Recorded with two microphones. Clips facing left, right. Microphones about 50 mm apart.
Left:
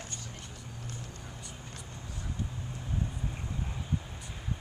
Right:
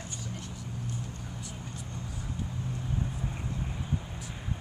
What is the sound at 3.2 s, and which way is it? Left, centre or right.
Vehicle, centre.